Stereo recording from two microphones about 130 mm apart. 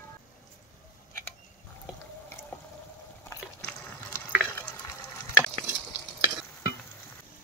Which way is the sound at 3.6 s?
10° left (ahead or behind).